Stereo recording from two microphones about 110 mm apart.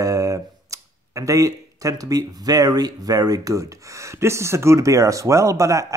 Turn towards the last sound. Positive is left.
turn(degrees=-30)  # may be behind; listen again after turning